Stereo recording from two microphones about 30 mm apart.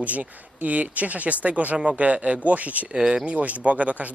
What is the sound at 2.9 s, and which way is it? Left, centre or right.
Speech, right.